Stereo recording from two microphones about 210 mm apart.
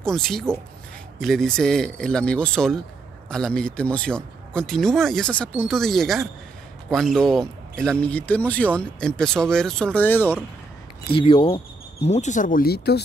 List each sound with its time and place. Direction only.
0.0 s a man's voice: centre (ahead or behind)
11.1 s speech: 25° left (ahead or behind); by 13.0 s 50° left (ahead or behind)